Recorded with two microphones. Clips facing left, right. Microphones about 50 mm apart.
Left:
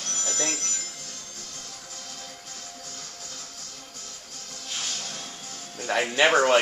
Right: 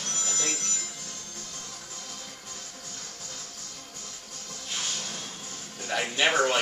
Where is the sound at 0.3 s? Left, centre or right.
Left.